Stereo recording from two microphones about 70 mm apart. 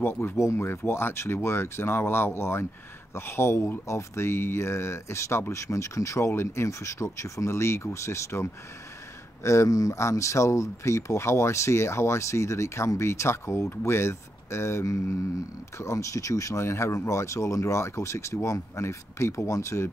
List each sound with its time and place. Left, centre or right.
0.0 s speech: left